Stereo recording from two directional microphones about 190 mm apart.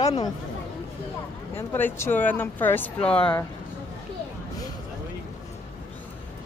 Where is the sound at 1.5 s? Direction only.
10° left (ahead or behind).